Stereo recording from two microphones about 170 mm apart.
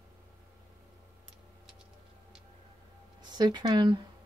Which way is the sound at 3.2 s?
25° right (ahead or behind).